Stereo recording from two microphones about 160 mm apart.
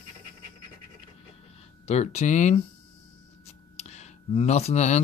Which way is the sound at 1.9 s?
45° left (ahead or behind).